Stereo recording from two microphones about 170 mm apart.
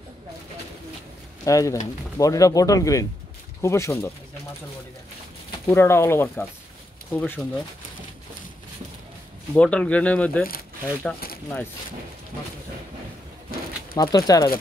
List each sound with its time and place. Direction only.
1.4 s speech: 20° left (ahead or behind)
5.7 s speech: 15° left (ahead or behind)
9.6 s speech: 5° left (ahead or behind)
13.9 s speech: 20° left (ahead or behind)